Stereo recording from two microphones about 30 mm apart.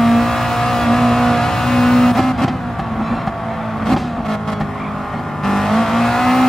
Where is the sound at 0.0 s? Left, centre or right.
Centre.